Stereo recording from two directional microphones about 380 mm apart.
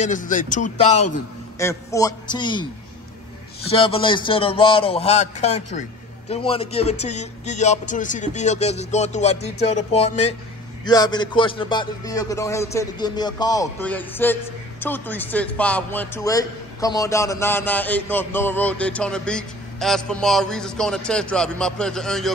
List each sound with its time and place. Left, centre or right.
0.0 s speech: centre
3.7 s a man's voice: centre